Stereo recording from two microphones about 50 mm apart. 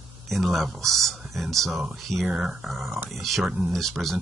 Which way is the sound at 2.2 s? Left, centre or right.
Centre.